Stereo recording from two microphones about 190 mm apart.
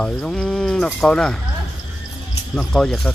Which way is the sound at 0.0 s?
5° left (ahead or behind).